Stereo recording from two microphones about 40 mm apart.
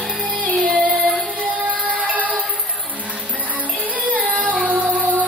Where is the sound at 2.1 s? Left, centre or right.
Right.